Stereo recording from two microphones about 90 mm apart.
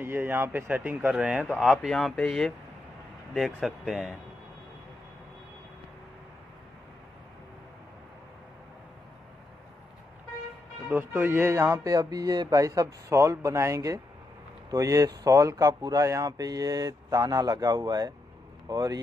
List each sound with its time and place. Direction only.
0.0 s speech: 25° right (ahead or behind)
1.1 s speech: 10° right (ahead or behind); by 2.5 s 5° left (ahead or behind)
3.6 s speech: 5° right (ahead or behind)
10.9 s speech: 20° right (ahead or behind); by 18.9 s 45° right (ahead or behind)